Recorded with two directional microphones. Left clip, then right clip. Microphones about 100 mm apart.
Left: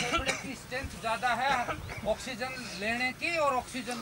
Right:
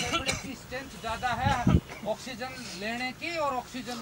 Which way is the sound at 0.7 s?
5° left (ahead or behind).